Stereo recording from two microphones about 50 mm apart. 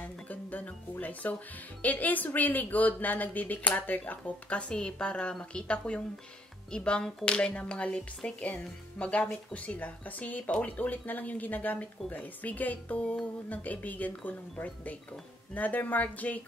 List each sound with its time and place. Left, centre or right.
0.0 s music: left
1.8 s speech: left